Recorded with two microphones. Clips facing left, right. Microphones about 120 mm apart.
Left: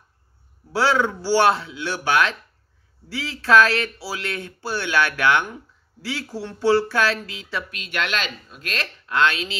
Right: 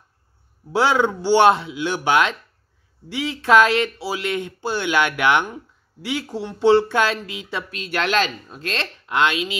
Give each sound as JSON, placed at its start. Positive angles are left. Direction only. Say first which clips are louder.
{"t": 0.7, "sound": "speech", "louder": "right 2 dB", "side_deg": -20}
{"t": 7.7, "sound": "speech", "louder": "right 7 dB", "side_deg": -35}